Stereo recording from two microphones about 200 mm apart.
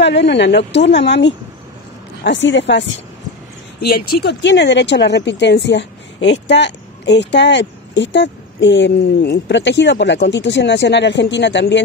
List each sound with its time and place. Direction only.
0.0 s speech: 60° left (ahead or behind)
3.8 s speech: 50° left (ahead or behind)